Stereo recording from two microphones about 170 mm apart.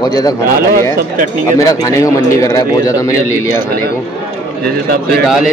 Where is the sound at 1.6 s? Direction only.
20° left (ahead or behind).